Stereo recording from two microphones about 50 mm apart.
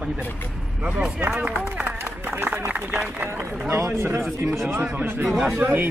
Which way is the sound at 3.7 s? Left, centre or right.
Right.